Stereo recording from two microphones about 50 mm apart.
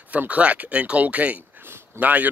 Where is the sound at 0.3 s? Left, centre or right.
Right.